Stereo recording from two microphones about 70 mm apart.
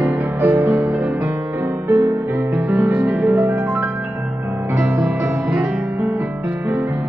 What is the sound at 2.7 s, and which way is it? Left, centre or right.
Music, right.